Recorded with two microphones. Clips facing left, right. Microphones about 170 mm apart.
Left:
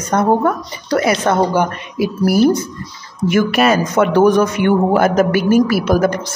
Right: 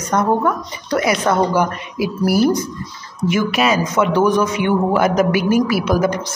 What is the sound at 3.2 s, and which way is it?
Speech, 55° left (ahead or behind).